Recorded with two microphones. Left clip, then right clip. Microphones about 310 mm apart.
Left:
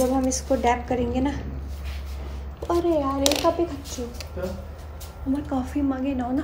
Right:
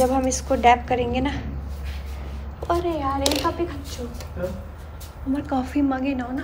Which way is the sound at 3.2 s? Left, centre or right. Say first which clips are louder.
Left 1 dB; centre.